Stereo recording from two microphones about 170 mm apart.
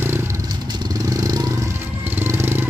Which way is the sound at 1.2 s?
20° right (ahead or behind).